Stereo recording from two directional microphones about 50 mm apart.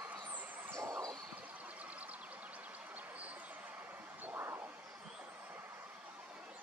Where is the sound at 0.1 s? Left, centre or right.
Right.